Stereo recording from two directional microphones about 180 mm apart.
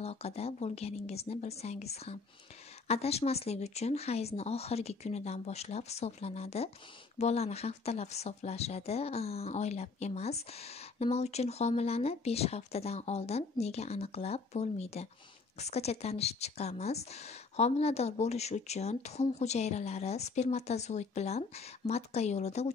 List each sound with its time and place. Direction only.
0.0 s speech: 35° left (ahead or behind)